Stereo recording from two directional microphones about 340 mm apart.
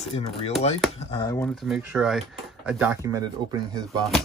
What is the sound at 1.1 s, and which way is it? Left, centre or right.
Speech, centre.